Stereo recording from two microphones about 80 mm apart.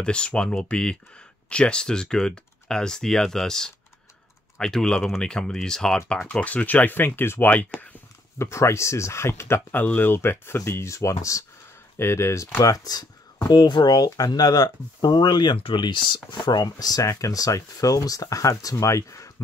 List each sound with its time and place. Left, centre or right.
0.0 s speech: centre
6.2 s speech: centre
8.4 s speech: left
13.5 s speech: left
16.3 s speech: left